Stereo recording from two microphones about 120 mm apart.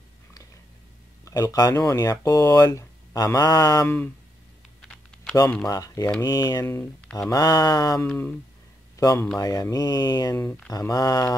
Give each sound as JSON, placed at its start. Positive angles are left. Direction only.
{"t": 1.2, "sound": "speech", "side_deg": 30}
{"t": 5.7, "sound": "speech", "side_deg": 30}
{"t": 6.7, "sound": "speech", "side_deg": 20}
{"t": 7.2, "sound": "speech", "side_deg": 30}
{"t": 8.9, "sound": "a sound", "side_deg": 30}
{"t": 9.4, "sound": "speech", "side_deg": 30}
{"t": 10.3, "sound": "speech", "side_deg": 20}